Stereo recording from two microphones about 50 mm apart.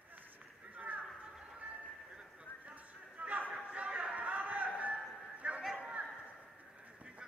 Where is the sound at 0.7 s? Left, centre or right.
Right.